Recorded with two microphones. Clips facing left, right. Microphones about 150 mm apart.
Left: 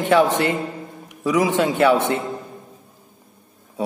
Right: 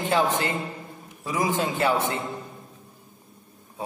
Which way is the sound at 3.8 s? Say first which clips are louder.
Left 9 dB; 85° left.